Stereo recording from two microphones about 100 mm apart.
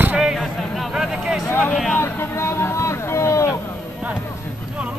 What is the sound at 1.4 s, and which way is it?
Speech, 25° left (ahead or behind).